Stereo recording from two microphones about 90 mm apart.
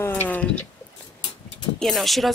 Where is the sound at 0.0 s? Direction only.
25° left (ahead or behind).